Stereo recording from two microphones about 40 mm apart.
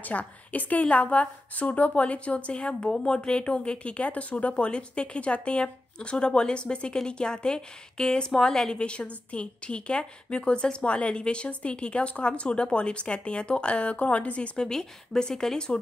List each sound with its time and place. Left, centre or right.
0.0 s a woman's voice: left; by 8.7 s centre
8.7 s a woman's voice: left
14.6 s speech: centre